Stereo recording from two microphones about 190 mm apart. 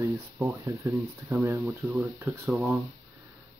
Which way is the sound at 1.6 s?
Centre (ahead or behind).